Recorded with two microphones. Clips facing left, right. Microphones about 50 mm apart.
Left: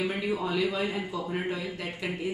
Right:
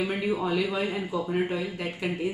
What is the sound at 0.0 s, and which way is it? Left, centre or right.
Speech, centre.